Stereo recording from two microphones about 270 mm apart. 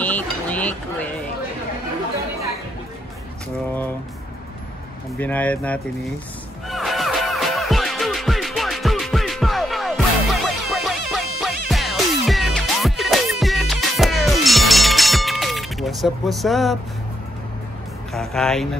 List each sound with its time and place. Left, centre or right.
0.0 s a sound: centre
5.2 s speech: centre
6.7 s music: centre
18.1 s speech: centre